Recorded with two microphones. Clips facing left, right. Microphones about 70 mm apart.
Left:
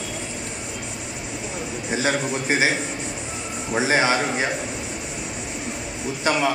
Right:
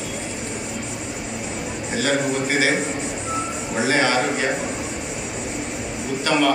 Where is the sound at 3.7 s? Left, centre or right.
Centre.